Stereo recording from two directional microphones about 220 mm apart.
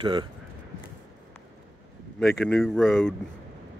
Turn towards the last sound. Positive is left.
turn(degrees=0)  # may be behind; listen again after turning